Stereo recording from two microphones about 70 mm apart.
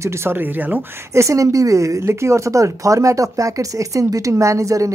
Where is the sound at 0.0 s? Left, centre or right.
Right.